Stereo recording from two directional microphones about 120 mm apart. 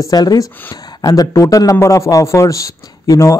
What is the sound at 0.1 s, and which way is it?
A man's voice, 30° left (ahead or behind).